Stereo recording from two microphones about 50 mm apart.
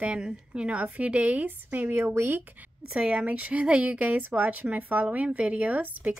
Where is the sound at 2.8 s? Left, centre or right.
Right.